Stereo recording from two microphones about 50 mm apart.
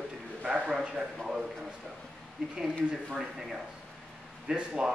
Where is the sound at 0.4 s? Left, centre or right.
Centre.